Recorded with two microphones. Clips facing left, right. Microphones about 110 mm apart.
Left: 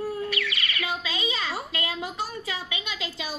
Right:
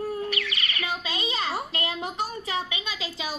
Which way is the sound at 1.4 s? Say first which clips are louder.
Right 2 dB; 30° right (ahead or behind).